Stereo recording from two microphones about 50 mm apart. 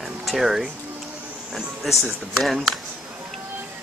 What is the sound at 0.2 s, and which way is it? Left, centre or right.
Speech, centre.